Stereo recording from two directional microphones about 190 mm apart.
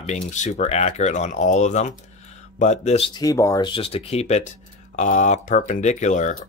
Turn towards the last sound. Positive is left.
turn(degrees=40)  # may be behind; listen again after turning